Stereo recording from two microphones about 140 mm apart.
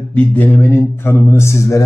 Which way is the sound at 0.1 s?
10° left (ahead or behind).